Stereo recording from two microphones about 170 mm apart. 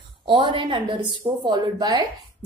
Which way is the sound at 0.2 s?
30° right (ahead or behind).